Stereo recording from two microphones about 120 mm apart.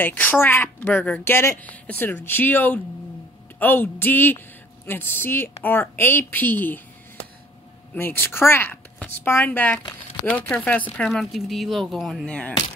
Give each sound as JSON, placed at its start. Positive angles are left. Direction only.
{"t": 0.0, "sound": "a woman's voice", "side_deg": 15}
{"t": 7.9, "sound": "a woman's voice", "side_deg": 15}
{"t": 11.1, "sound": "speech", "side_deg": 0}